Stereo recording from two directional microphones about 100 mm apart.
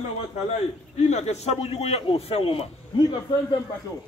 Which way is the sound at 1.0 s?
90° left.